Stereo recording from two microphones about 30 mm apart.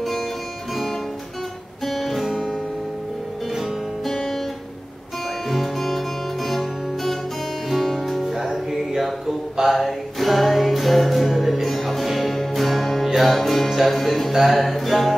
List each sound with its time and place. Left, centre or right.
1.9 s guitar: centre
4.1 s music: centre
5.5 s music: centre
8.3 s music: centre
11.2 s music: centre
11.6 s music: centre